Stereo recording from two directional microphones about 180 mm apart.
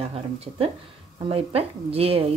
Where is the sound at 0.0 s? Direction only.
35° right (ahead or behind).